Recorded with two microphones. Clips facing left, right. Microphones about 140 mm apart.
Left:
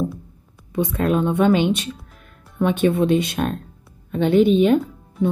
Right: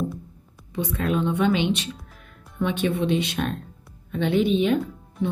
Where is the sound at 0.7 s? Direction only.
50° left (ahead or behind).